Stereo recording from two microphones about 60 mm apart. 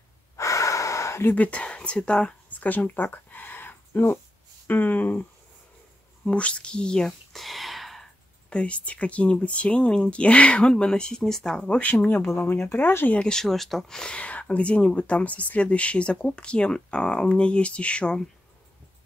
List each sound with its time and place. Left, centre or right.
0.4 s gasp: left
1.3 s speech: left
2.5 s speech: left
6.2 s speech: centre
8.5 s speech: centre
11.8 s speech: left
13.1 s speech: centre